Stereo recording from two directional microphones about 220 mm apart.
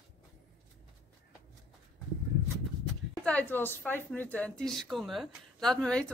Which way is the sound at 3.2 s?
5° left (ahead or behind).